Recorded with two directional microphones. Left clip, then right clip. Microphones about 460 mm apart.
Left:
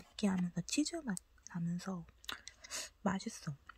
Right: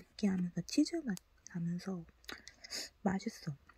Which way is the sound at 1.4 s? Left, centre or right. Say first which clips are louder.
Even; centre.